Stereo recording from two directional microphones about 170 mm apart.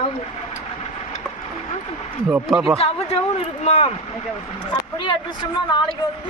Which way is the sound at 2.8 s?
35° left (ahead or behind).